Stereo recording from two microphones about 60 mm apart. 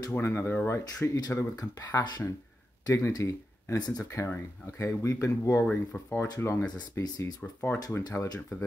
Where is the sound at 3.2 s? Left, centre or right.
Left.